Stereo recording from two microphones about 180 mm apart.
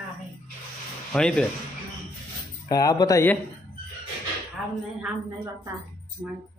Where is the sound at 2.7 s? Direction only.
20° left (ahead or behind).